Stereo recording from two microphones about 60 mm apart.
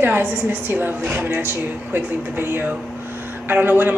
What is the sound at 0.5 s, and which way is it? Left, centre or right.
A woman's voice, right.